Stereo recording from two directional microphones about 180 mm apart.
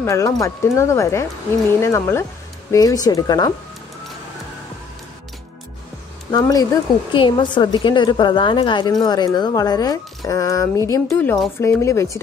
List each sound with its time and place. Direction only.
0.0 s a woman's voice: 15° left (ahead or behind)
6.3 s a woman's voice: 20° left (ahead or behind)